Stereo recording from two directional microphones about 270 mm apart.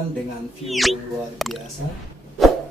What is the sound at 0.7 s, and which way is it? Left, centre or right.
Speech, centre.